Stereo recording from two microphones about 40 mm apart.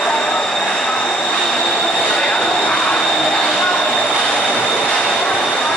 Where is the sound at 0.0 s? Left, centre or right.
Centre.